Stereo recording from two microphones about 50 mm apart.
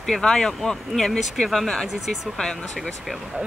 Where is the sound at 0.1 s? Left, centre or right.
Centre.